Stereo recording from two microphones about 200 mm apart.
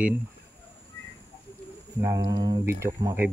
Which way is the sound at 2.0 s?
15° right (ahead or behind).